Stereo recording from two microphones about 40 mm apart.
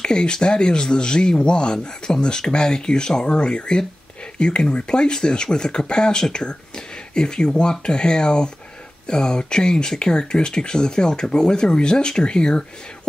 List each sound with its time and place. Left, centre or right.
0.0 s speech: left